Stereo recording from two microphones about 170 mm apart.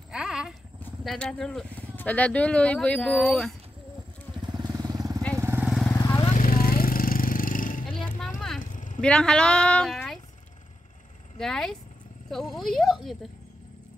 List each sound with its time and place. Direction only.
0.1 s a sound: 5° right (ahead or behind)
0.7 s speech: 5° left (ahead or behind)
4.3 s vehicle: 30° right (ahead or behind)
5.9 s vehicle: 15° left (ahead or behind)
6.3 s vehicle: 55° left (ahead or behind)
8.2 s a sound: 5° left (ahead or behind)
8.5 s a sound: 50° left (ahead or behind)
9.0 s a woman's voice: 5° left (ahead or behind)
11.3 s speech: 5° left (ahead or behind)